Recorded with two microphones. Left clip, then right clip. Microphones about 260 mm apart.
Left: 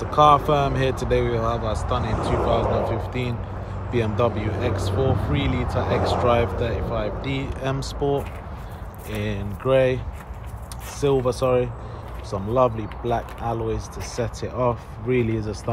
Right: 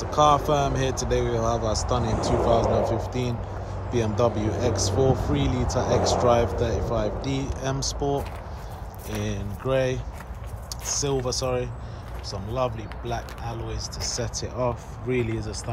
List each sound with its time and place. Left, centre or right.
0.0 s speech: centre